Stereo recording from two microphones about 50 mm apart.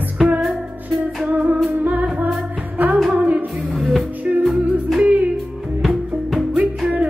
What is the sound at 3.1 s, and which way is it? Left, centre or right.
Music, right.